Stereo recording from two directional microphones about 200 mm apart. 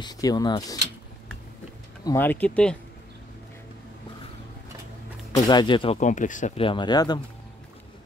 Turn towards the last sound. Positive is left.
turn(degrees=20)  # may be behind; listen again after turning